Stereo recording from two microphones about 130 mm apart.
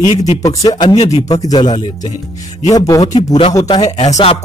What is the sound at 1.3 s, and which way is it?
A man's voice, 30° left (ahead or behind).